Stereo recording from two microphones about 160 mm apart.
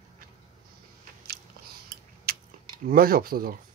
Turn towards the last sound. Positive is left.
turn(degrees=-65)  # may be behind; listen again after turning